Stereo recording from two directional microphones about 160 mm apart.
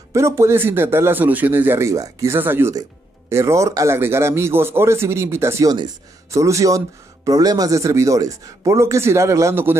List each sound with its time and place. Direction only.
0.1 s speech: 15° right (ahead or behind)